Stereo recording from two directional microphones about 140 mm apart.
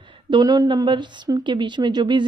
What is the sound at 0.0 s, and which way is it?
A woman's voice, 35° right (ahead or behind).